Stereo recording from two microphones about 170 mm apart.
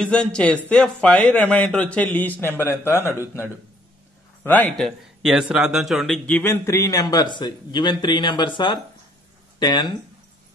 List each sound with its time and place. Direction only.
0.0 s a man's voice: 5° left (ahead or behind)
4.4 s a man's voice: 10° left (ahead or behind); by 9.9 s 25° left (ahead or behind)